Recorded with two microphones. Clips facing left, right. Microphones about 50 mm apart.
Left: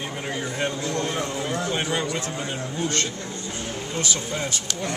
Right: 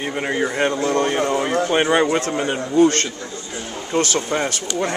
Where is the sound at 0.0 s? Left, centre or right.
Right.